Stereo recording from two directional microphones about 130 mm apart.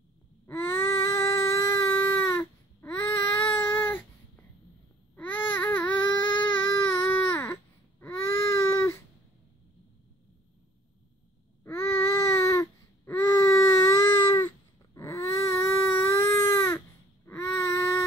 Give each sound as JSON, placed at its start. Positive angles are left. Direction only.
{"t": 0.5, "sound": "baby cry", "side_deg": 20}
{"t": 5.1, "sound": "babbling", "side_deg": 15}
{"t": 8.0, "sound": "baby cry", "side_deg": 20}
{"t": 11.6, "sound": "baby cry", "side_deg": 20}